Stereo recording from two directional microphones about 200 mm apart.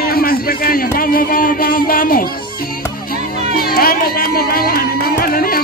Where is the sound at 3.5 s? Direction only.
50° left (ahead or behind).